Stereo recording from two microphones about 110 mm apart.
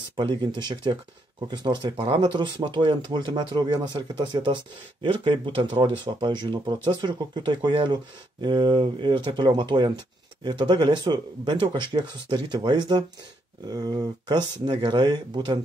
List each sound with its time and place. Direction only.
0.1 s speech: 45° right (ahead or behind)